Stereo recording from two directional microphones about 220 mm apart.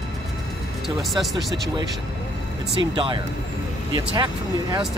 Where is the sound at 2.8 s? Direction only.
20° right (ahead or behind).